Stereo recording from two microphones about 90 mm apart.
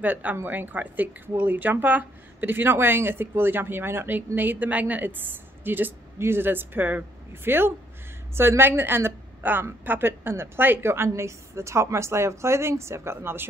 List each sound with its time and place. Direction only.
0.0 s speech: 20° right (ahead or behind)